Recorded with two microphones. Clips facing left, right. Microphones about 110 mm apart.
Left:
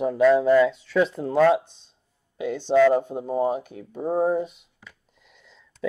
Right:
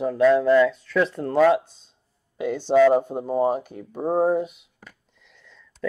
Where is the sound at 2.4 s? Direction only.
50° right (ahead or behind).